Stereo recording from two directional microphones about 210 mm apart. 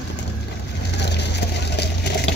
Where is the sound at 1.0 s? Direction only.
55° left (ahead or behind).